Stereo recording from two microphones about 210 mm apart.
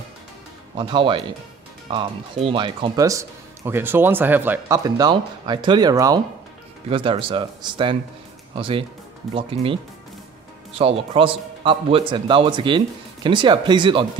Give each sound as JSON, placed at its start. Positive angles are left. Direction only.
{"t": 0.7, "sound": "speech", "side_deg": -25}
{"t": 10.8, "sound": "speech", "side_deg": -25}